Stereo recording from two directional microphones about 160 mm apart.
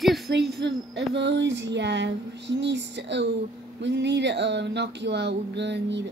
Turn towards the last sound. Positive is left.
turn(degrees=-90)